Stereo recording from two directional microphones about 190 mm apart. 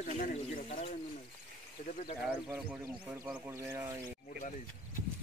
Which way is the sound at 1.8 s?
40° left (ahead or behind).